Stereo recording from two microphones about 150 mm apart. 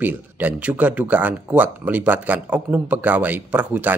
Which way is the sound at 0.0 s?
10° right (ahead or behind).